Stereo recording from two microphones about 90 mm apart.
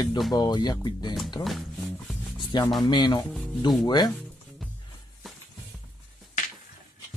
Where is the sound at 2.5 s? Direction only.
55° left (ahead or behind).